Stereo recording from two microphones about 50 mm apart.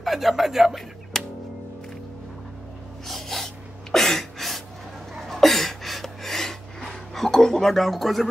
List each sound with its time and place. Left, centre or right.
0.0 s speech: centre
1.1 s music: centre
3.1 s a sound: centre